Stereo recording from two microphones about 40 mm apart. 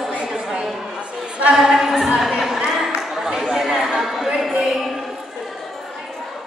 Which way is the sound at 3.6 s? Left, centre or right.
Centre.